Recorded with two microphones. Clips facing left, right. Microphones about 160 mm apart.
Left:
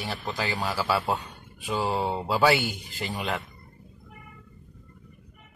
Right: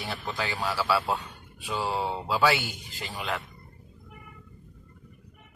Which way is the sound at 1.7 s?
10° left (ahead or behind).